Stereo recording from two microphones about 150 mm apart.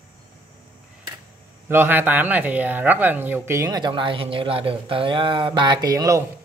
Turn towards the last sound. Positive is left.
turn(degrees=-25)  # may be behind; listen again after turning